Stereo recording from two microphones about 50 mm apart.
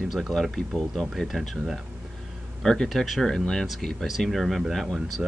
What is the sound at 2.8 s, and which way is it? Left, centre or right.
Speech, centre.